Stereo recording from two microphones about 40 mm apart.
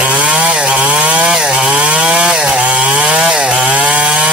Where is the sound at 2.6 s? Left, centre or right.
Right.